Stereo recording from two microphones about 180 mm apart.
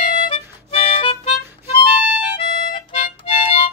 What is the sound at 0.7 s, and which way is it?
Music, 35° left (ahead or behind).